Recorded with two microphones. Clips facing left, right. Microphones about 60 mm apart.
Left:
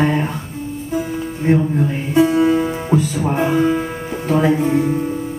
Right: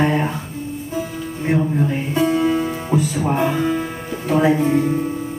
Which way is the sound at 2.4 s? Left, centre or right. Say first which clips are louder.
Left 3 dB; centre.